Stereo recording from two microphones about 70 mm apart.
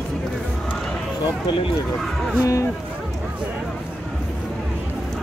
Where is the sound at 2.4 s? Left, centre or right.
Left.